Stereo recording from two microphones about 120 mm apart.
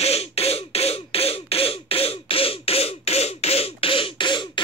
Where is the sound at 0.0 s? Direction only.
55° left (ahead or behind).